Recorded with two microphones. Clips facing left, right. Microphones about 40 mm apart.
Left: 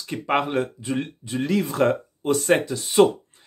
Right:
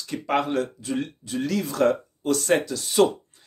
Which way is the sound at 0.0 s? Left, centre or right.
Left.